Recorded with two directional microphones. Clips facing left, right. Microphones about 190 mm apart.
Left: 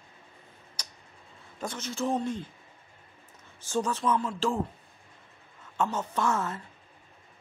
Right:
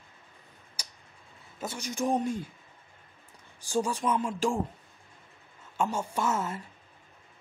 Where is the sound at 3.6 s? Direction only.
10° right (ahead or behind).